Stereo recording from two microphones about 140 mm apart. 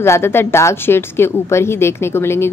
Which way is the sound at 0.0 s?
20° left (ahead or behind).